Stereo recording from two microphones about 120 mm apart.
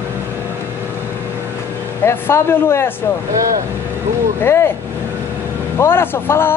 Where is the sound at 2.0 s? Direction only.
20° left (ahead or behind).